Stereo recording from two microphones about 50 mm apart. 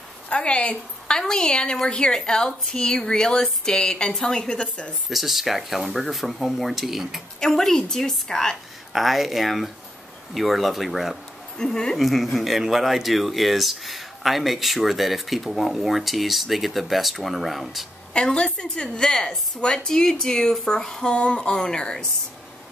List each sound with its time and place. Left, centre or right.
0.3 s a woman's voice: left
5.1 s speech: centre
7.3 s a woman's voice: centre
8.9 s speech: centre
11.5 s a woman's voice: centre
12.0 s speech: centre
18.1 s a woman's voice: centre